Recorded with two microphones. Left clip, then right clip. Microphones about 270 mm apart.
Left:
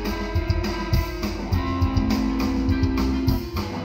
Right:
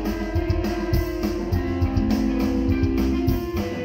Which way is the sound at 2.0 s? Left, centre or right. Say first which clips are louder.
Right 3 dB; left.